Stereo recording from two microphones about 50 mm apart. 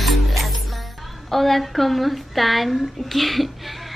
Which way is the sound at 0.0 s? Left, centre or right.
Centre.